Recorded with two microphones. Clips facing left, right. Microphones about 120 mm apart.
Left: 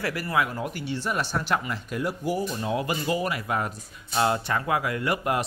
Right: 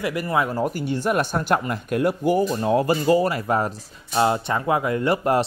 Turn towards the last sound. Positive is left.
turn(degrees=-30)  # may be behind; listen again after turning